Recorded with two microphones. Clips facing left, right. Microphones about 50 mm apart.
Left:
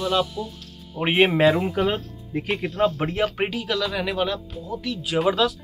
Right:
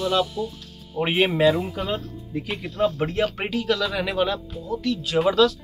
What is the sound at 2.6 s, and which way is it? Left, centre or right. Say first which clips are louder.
Speech: left 1 dB; left.